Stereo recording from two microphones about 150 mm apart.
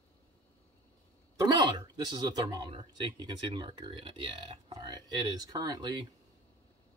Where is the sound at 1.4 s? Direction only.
30° right (ahead or behind).